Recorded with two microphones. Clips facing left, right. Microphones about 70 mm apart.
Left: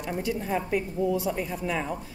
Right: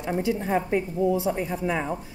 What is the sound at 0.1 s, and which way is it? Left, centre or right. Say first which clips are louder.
A woman's voice: right 4 dB; right.